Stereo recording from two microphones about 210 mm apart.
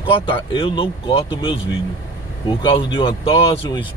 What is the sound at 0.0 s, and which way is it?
Speech, 25° left (ahead or behind).